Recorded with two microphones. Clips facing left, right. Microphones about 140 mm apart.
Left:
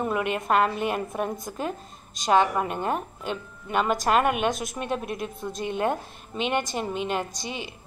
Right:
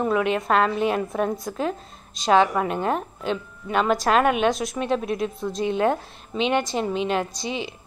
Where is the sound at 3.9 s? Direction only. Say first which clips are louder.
Right 3 dB; 45° left (ahead or behind).